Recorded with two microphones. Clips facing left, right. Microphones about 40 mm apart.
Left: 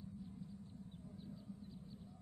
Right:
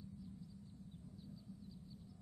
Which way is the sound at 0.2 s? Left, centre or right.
Left.